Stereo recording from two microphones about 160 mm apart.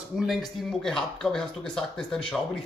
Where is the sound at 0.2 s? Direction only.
Centre (ahead or behind).